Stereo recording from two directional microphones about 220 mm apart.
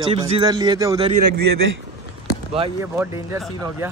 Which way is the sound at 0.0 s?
25° right (ahead or behind).